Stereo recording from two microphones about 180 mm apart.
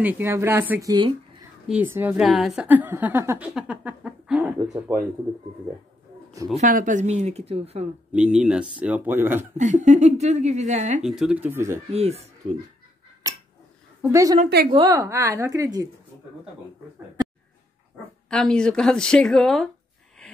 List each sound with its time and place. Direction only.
0.0 s a woman's voice: 10° right (ahead or behind)
1.7 s a woman's voice: 10° right (ahead or behind)
6.5 s speech: 45° right (ahead or behind)
8.1 s a woman's voice: 5° right (ahead or behind)
9.6 s speech: 45° right (ahead or behind)
11.0 s a woman's voice: 5° right (ahead or behind)
11.9 s speech: 35° right (ahead or behind)
14.1 s a woman's voice: 20° right (ahead or behind)
18.3 s speech: 5° left (ahead or behind)